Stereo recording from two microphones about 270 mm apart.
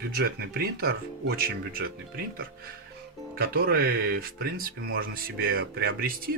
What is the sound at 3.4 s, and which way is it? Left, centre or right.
Speech, right.